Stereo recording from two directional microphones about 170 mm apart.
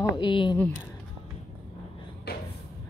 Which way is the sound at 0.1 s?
30° left (ahead or behind).